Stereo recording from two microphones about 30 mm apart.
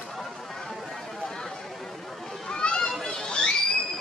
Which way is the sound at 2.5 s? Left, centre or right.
Left.